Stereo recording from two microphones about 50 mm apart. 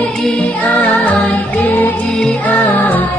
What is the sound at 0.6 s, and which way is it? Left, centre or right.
Music, left.